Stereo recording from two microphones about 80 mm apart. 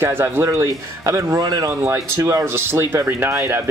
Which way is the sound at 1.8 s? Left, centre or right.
Right.